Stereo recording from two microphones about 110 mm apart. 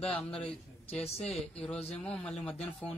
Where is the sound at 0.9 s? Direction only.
75° left (ahead or behind).